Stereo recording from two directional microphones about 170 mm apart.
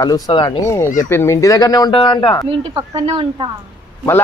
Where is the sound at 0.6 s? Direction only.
15° left (ahead or behind).